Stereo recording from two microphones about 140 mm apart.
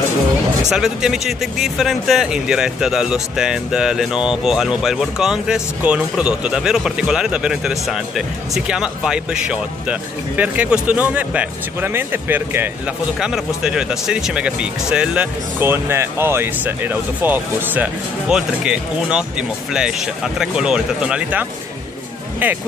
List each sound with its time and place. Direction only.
0.7 s speech: 5° right (ahead or behind)
20.3 s speech: 5° right (ahead or behind)